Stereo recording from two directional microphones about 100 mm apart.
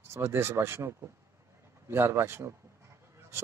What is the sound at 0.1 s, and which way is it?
A man's voice, 25° right (ahead or behind).